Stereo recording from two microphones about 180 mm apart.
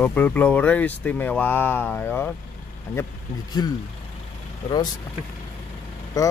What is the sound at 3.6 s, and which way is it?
Speech, 20° left (ahead or behind).